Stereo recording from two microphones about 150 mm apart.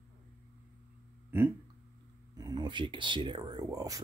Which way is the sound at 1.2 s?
15° right (ahead or behind).